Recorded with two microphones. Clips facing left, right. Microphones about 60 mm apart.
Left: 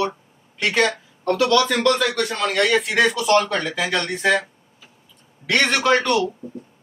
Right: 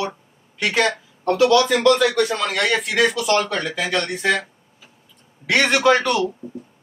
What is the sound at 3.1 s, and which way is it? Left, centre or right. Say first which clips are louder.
Speech: left 2 dB; centre.